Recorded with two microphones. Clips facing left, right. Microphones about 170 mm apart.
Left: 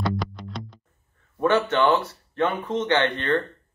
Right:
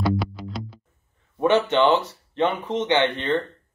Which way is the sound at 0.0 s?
5° right (ahead or behind).